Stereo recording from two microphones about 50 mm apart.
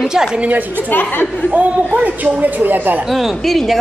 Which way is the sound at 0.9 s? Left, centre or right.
Left.